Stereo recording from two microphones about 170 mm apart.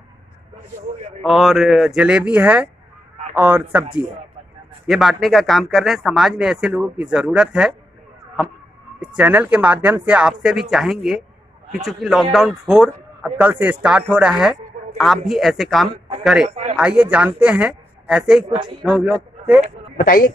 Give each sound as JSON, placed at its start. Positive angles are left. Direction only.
{"t": 1.2, "sound": "speech", "side_deg": 0}
{"t": 4.8, "sound": "speech", "side_deg": 0}
{"t": 9.0, "sound": "speech", "side_deg": -10}
{"t": 20.0, "sound": "speech", "side_deg": 55}